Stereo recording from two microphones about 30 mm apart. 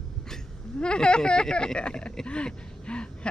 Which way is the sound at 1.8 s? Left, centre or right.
Left.